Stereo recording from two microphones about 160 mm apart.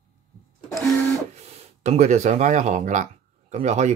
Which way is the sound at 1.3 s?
45° right (ahead or behind).